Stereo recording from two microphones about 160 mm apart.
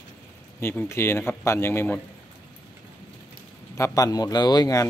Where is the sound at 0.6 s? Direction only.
15° left (ahead or behind).